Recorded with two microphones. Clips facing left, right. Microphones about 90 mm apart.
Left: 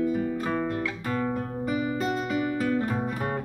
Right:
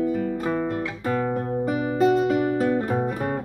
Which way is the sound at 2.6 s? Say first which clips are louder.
Right 4 dB; 30° right (ahead or behind).